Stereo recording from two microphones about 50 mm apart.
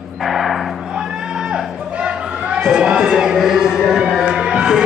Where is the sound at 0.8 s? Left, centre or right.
Centre.